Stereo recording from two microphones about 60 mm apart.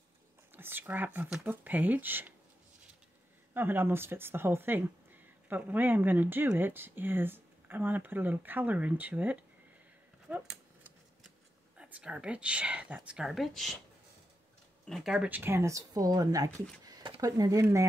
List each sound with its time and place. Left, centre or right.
0.5 s speech: right
3.5 s speech: right
10.2 s a sound: centre
11.7 s speech: centre
13.2 s speech: centre
14.9 s speech: centre
15.2 s speech: right
15.5 s speech: right